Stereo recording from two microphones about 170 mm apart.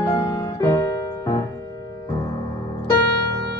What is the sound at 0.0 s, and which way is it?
Music, 20° left (ahead or behind).